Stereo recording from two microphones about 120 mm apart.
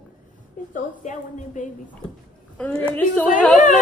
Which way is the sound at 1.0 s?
90° left.